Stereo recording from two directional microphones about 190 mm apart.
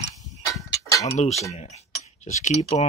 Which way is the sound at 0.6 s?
15° left (ahead or behind).